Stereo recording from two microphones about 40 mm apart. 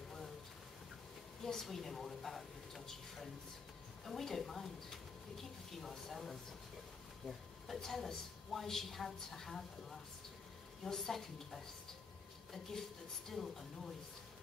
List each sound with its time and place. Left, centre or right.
1.4 s a woman's voice: centre
13.3 s speech: centre